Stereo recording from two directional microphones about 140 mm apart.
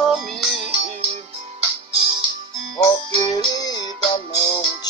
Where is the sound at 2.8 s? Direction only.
25° left (ahead or behind).